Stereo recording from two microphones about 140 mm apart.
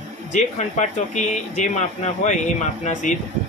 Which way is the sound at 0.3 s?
60° left (ahead or behind).